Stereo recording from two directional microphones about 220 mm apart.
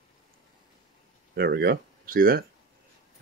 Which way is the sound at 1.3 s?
45° right (ahead or behind).